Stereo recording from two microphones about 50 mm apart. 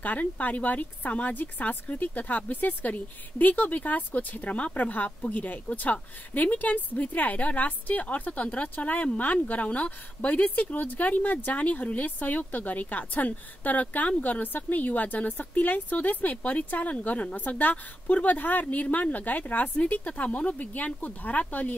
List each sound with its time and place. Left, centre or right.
0.0 s speech: left